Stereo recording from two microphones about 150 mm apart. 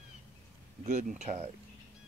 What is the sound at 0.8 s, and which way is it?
Speech, 55° right (ahead or behind).